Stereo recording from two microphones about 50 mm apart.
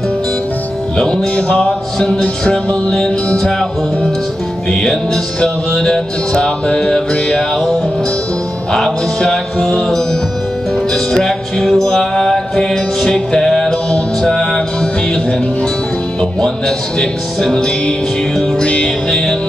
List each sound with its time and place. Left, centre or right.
0.9 s music: centre
4.6 s music: centre
8.7 s music: centre
16.2 s music: centre